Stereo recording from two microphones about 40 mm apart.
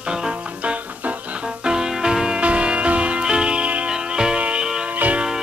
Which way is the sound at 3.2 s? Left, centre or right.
Right.